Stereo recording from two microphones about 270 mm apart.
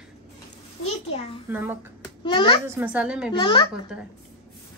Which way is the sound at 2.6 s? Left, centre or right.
Centre.